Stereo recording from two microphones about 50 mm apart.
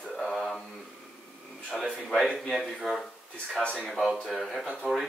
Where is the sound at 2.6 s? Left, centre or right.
Centre.